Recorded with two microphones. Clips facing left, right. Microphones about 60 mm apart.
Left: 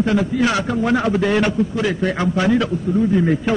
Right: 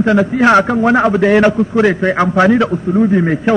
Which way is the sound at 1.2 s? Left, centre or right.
Right.